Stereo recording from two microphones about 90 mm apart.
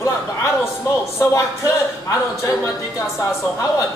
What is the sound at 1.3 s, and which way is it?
Speech, 35° left (ahead or behind).